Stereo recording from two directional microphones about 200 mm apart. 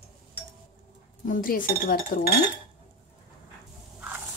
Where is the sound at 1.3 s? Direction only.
45° left (ahead or behind).